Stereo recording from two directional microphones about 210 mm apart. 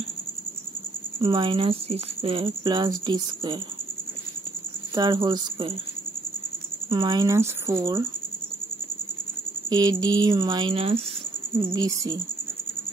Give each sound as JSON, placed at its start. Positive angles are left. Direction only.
{"t": 1.2, "sound": "speech", "side_deg": -20}
{"t": 4.9, "sound": "speech", "side_deg": -20}
{"t": 6.9, "sound": "speech", "side_deg": -20}
{"t": 9.7, "sound": "speech", "side_deg": -20}